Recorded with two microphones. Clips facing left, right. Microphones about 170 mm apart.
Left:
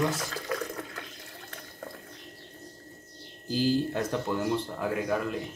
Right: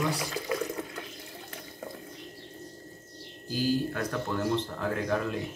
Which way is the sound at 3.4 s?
25° left (ahead or behind).